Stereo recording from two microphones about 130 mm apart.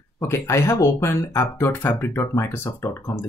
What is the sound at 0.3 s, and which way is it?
Speech, 20° left (ahead or behind).